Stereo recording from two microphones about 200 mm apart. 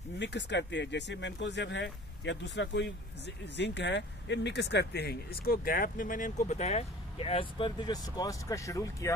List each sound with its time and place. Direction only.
0.2 s speech: 60° left (ahead or behind); by 9.1 s 15° left (ahead or behind)